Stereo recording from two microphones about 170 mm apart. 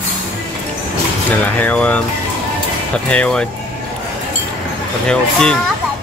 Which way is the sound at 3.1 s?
5° left (ahead or behind).